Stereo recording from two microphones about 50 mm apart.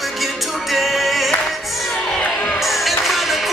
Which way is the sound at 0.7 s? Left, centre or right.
Centre.